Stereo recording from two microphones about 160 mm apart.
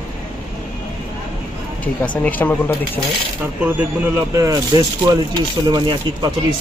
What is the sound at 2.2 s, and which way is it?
Speech, 10° left (ahead or behind).